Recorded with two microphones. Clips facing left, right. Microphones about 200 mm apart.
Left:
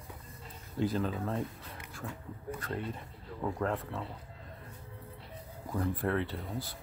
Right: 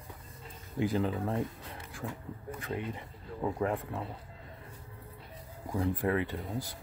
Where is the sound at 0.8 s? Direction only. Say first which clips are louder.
Right 2 dB; 15° right (ahead or behind).